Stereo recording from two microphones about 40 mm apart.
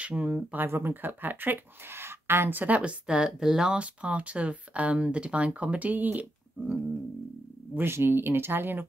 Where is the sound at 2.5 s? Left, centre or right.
Right.